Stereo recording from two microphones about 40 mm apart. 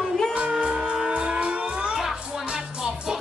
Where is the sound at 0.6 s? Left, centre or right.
Right.